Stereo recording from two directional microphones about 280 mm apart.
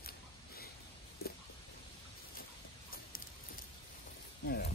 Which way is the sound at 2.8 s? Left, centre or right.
Left.